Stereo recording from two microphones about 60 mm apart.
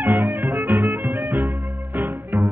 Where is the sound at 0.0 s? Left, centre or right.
Right.